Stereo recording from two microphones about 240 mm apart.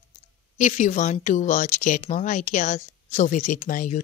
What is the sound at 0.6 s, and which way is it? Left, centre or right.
Speech, left.